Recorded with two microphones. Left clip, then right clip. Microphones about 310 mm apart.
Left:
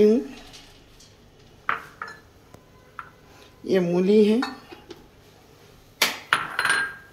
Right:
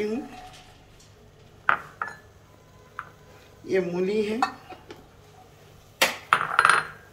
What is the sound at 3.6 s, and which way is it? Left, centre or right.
Speech, left.